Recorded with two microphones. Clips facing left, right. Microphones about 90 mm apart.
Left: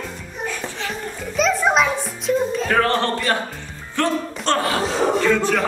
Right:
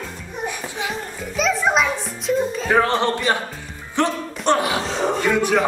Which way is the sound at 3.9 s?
20° right (ahead or behind).